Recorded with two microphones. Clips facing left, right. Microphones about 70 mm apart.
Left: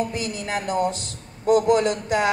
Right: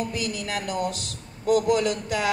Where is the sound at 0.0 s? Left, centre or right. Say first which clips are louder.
Left 2 dB; left.